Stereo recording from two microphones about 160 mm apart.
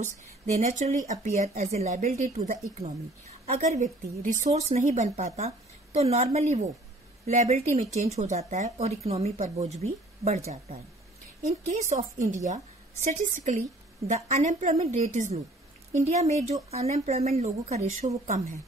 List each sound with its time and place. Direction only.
0.0 s a woman's voice: 50° right (ahead or behind)
11.6 s a woman's voice: 45° right (ahead or behind)